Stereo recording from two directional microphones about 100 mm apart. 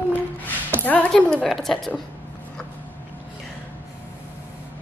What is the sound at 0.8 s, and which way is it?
A woman's voice, 15° left (ahead or behind).